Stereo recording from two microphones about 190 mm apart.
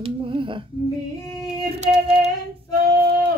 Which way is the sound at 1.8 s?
35° right (ahead or behind).